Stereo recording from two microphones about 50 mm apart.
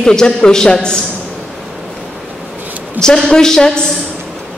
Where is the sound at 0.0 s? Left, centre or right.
Centre.